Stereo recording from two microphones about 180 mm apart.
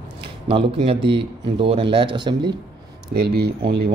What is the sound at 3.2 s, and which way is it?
Speech, 60° right (ahead or behind).